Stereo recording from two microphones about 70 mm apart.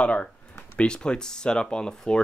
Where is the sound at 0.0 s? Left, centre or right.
Centre.